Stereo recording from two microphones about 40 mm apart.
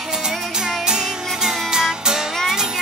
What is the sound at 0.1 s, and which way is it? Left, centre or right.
Music, centre.